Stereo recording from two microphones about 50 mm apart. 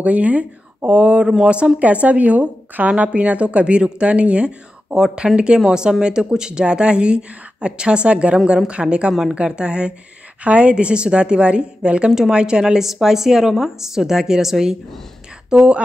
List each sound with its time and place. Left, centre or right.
0.0 s a woman's voice: right